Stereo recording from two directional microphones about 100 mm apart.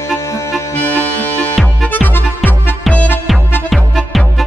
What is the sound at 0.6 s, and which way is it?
Music, 20° left (ahead or behind).